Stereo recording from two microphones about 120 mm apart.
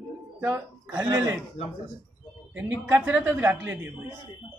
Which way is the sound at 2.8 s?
15° right (ahead or behind).